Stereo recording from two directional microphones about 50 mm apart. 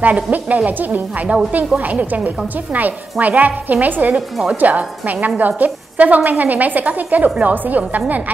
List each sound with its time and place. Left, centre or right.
0.0 s a woman's voice: right